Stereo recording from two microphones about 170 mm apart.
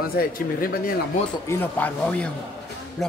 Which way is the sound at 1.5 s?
10° left (ahead or behind).